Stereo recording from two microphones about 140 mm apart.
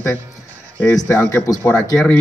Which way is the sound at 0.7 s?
10° left (ahead or behind).